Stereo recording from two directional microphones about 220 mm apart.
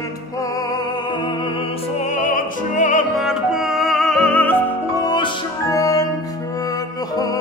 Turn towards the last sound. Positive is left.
turn(degrees=15)  # may be behind; listen again after turning